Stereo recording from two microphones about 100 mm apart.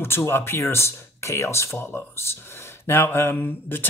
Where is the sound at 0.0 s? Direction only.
20° left (ahead or behind).